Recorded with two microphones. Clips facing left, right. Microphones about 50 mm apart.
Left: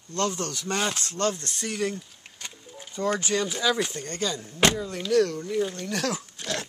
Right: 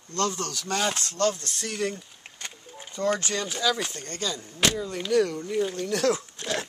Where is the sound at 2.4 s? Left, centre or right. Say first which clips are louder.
Right 1 dB; right.